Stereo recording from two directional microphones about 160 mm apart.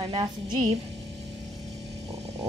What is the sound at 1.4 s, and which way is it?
Vehicle, centre (ahead or behind).